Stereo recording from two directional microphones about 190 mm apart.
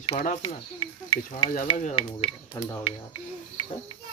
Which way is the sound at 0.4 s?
25° left (ahead or behind).